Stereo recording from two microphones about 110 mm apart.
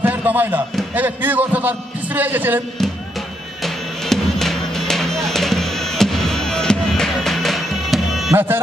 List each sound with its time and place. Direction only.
0.0 s a man's voice: 15° right (ahead or behind)
2.8 s music: 5° left (ahead or behind)
8.3 s speech: 20° right (ahead or behind)